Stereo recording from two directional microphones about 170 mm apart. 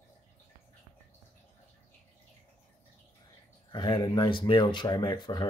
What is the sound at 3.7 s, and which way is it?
Speech, 25° left (ahead or behind).